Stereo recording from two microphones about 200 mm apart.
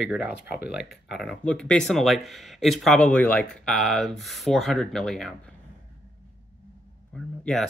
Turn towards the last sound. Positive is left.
turn(degrees=0)  # may be behind; listen again after turning